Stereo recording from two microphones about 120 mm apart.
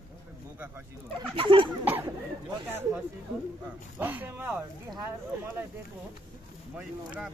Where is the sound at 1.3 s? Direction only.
45° right (ahead or behind).